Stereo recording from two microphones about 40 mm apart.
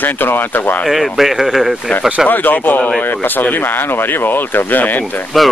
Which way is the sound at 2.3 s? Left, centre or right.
Left.